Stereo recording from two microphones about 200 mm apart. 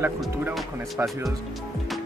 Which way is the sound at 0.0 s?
10° right (ahead or behind).